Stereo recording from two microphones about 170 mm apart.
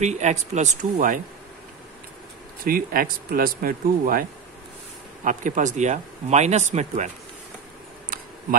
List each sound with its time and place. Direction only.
0.0 s speech: 40° right (ahead or behind)
2.6 s speech: 55° right (ahead or behind)